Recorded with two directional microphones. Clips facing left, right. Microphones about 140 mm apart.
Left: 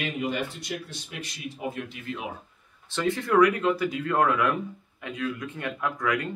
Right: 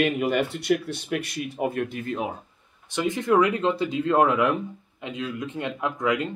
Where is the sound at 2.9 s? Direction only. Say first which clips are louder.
Right 3 dB; 15° right (ahead or behind).